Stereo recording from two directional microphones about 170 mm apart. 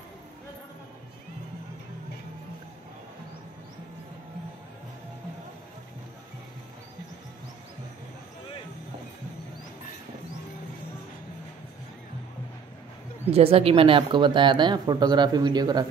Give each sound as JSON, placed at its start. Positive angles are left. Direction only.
{"t": 13.3, "sound": "speech", "side_deg": -35}